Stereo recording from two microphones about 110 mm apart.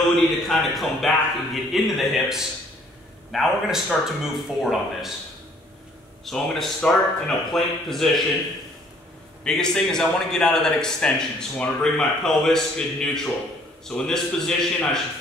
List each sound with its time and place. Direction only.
0.1 s a man's voice: centre (ahead or behind)
6.2 s a man's voice: centre (ahead or behind)
9.4 s a man's voice: 5° left (ahead or behind)